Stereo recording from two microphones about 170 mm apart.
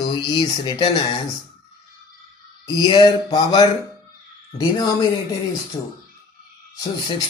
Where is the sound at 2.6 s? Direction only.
25° left (ahead or behind).